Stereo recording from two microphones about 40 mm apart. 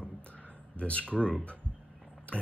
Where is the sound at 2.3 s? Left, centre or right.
Left.